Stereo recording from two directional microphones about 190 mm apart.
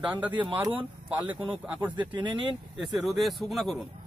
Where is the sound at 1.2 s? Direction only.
25° right (ahead or behind).